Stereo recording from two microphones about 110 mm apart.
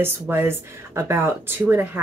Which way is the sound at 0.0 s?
20° right (ahead or behind).